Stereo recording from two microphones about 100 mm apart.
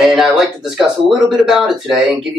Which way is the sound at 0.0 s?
5° right (ahead or behind).